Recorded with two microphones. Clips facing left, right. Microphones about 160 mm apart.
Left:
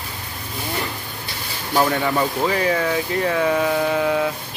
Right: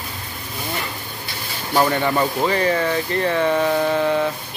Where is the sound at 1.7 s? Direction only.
Centre (ahead or behind).